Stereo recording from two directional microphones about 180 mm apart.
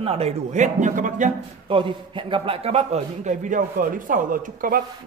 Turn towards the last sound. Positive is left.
turn(degrees=-50)  # may be behind; listen again after turning